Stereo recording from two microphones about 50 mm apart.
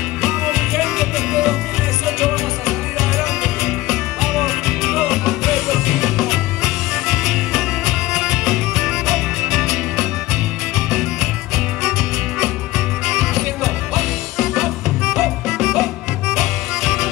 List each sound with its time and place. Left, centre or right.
0.2 s music: centre
13.0 s music: centre